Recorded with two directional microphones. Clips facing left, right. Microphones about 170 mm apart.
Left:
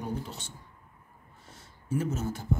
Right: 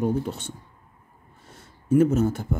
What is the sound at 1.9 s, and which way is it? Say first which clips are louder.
Speech: right 12 dB; 55° right (ahead or behind).